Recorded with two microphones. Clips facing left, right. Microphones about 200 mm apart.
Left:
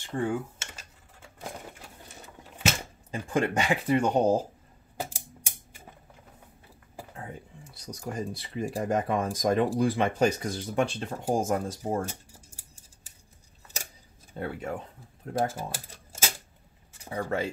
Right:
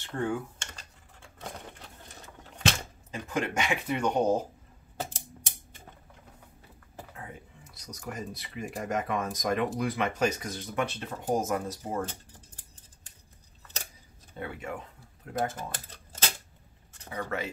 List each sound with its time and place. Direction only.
0.0 s speech: 15° left (ahead or behind)
1.4 s a sound: 10° left (ahead or behind)
3.1 s speech: 30° left (ahead or behind)
4.9 s a sound: 10° left (ahead or behind)
7.7 s speech: 30° left (ahead or behind)
12.1 s scissors: 10° left (ahead or behind)
14.3 s speech: 35° left (ahead or behind)
15.5 s typewriter: 10° left (ahead or behind)
17.1 s speech: 30° left (ahead or behind)